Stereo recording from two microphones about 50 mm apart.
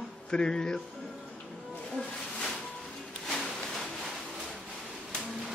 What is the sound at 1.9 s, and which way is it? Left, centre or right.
Music, centre.